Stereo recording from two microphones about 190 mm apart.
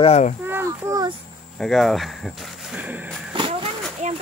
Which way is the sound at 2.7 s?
10° right (ahead or behind).